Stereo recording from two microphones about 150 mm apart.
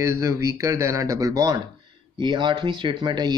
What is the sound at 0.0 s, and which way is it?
Speech, 20° right (ahead or behind).